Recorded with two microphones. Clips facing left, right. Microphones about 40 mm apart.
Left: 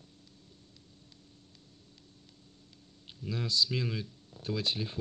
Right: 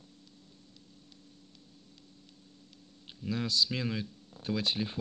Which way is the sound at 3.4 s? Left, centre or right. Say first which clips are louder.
Left 1 dB; right.